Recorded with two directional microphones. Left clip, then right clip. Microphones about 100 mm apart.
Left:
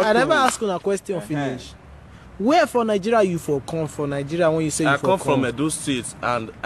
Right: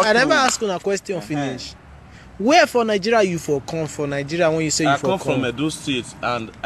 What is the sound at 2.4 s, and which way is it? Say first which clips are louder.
Speech: right 3 dB; 10° left (ahead or behind).